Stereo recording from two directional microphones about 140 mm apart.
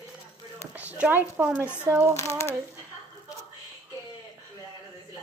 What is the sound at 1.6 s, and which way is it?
Speech, 15° left (ahead or behind).